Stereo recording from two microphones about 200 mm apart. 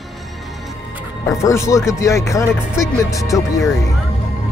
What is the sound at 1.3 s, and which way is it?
Speech, 15° left (ahead or behind).